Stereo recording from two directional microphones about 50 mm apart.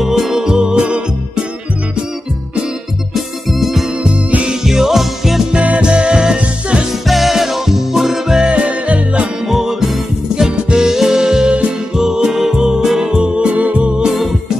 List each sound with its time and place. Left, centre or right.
0.0 s music: centre
3.4 s music: centre
4.0 s music: right
4.6 s music: centre
5.5 s music: right
7.1 s music: centre; by 9.3 s right
9.5 s music: centre